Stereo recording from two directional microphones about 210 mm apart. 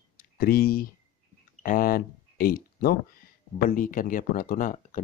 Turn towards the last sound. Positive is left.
turn(degrees=40)  # may be behind; listen again after turning